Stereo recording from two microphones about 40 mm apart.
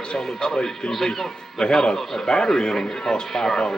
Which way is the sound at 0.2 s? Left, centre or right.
Centre.